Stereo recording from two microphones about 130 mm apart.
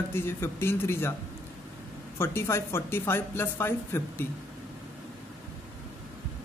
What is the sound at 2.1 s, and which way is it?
Speech, 20° left (ahead or behind).